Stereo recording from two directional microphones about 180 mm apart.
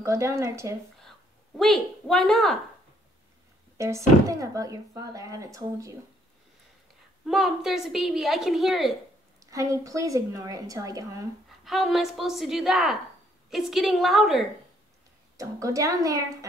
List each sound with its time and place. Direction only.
0.0 s speech: 15° right (ahead or behind)
1.6 s a woman's voice: centre (ahead or behind)
3.7 s speech: 15° right (ahead or behind)
7.2 s a woman's voice: centre (ahead or behind)
9.4 s speech: 20° right (ahead or behind)
11.6 s a woman's voice: centre (ahead or behind)
15.3 s speech: 20° right (ahead or behind)